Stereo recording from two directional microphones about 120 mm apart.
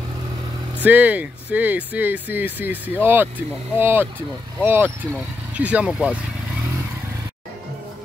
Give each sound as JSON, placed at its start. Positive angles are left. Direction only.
{"t": 0.8, "sound": "speech", "side_deg": -15}